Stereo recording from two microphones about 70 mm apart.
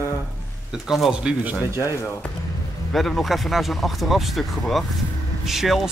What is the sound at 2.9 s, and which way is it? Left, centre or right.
Speech, centre.